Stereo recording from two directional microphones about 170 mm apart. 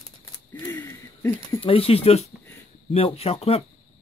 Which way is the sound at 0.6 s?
15° left (ahead or behind).